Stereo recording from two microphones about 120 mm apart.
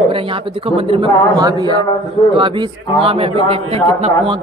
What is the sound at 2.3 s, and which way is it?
A man's voice, 45° right (ahead or behind).